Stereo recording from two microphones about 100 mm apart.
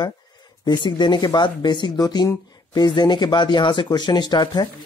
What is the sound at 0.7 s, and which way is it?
Speech, 50° left (ahead or behind).